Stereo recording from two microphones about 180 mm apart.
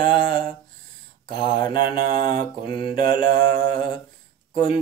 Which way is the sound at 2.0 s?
50° right (ahead or behind).